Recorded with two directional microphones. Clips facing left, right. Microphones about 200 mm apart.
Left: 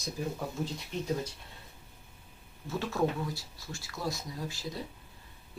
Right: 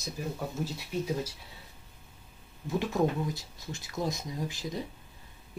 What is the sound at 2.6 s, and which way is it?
Speech, 15° right (ahead or behind).